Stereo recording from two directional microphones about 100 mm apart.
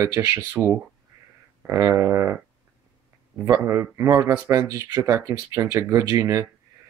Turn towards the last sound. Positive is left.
turn(degrees=-35)  # may be behind; listen again after turning